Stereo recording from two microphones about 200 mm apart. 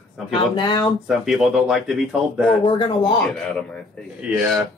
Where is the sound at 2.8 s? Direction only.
25° left (ahead or behind).